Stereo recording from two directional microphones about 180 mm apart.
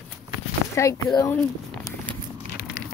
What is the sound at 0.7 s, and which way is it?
Speech, 15° left (ahead or behind).